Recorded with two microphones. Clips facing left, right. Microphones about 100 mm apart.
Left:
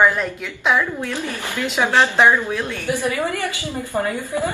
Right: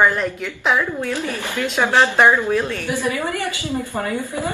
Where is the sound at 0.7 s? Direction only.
10° right (ahead or behind).